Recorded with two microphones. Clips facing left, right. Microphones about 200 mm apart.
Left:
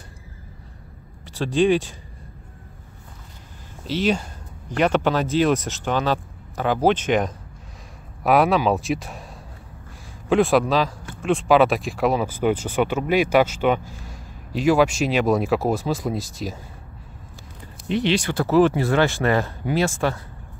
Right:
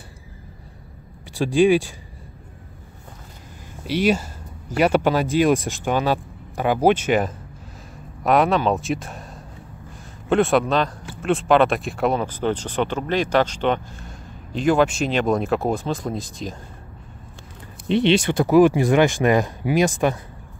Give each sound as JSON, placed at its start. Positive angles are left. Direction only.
{"t": 1.3, "sound": "speech", "side_deg": -10}
{"t": 3.8, "sound": "speech", "side_deg": -10}
{"t": 10.3, "sound": "speech", "side_deg": 0}
{"t": 17.8, "sound": "speech", "side_deg": -25}